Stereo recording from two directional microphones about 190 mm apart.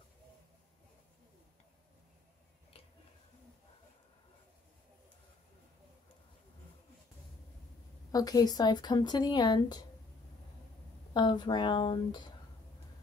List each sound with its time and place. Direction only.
8.1 s speech: 20° left (ahead or behind)
11.1 s speech: 25° left (ahead or behind)